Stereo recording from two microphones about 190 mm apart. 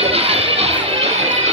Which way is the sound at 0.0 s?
30° right (ahead or behind).